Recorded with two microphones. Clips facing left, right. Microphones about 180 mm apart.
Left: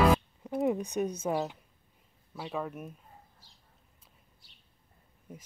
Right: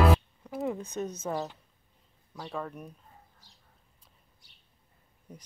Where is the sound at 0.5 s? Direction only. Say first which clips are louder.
Left 4 dB; 15° left (ahead or behind).